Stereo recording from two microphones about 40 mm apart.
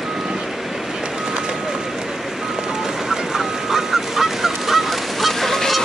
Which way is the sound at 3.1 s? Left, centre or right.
Centre.